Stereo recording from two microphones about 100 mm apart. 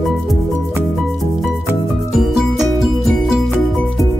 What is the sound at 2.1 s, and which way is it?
Music, 5° right (ahead or behind).